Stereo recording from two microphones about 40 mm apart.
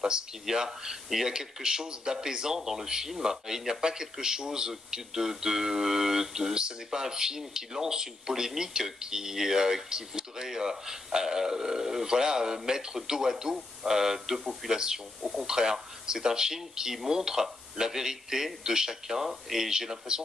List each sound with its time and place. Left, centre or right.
0.0 s speech: centre
14.7 s speech: centre